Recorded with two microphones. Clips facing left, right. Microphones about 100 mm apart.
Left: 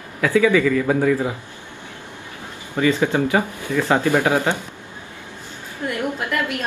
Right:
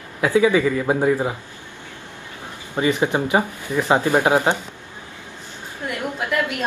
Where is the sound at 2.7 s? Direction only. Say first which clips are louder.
Left 1 dB; 20° right (ahead or behind).